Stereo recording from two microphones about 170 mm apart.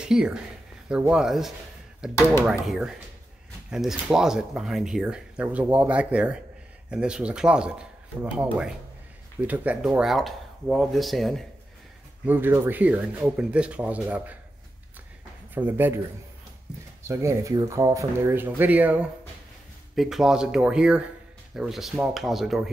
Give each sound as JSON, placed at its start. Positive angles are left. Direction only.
{"t": 0.0, "sound": "speech", "side_deg": -5}
{"t": 12.3, "sound": "speech", "side_deg": -10}
{"t": 15.5, "sound": "speech", "side_deg": -10}
{"t": 17.0, "sound": "speech", "side_deg": -15}